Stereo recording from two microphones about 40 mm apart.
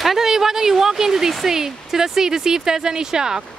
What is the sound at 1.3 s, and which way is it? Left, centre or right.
Speech, centre.